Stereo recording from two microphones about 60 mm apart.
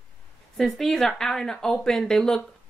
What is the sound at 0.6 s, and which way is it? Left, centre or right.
A woman's voice, centre.